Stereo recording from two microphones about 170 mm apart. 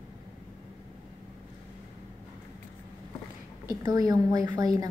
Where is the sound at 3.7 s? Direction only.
20° right (ahead or behind).